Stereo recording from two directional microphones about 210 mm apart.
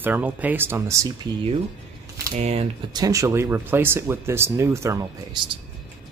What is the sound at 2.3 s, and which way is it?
Speech, 30° right (ahead or behind).